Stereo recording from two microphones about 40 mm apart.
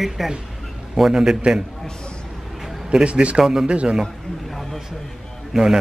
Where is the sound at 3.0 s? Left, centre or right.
Right.